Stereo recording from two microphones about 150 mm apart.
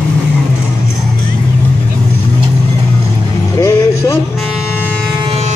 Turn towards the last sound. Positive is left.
turn(degrees=20)  # may be behind; listen again after turning